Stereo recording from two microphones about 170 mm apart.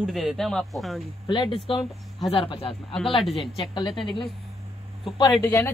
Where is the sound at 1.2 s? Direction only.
25° left (ahead or behind).